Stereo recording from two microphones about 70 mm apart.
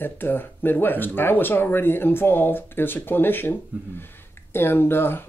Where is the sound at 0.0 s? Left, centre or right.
Left.